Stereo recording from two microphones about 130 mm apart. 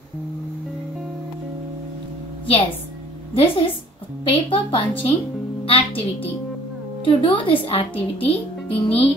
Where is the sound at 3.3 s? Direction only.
45° left (ahead or behind).